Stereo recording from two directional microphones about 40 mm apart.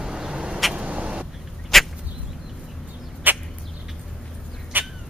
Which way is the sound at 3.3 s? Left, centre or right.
Right.